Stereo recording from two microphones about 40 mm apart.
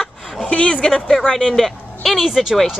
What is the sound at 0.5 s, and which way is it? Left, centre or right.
Speech, left.